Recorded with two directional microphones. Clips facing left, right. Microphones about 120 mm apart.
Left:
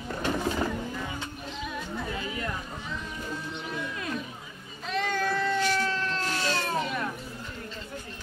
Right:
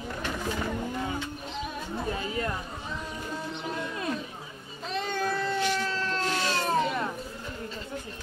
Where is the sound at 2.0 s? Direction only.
35° right (ahead or behind).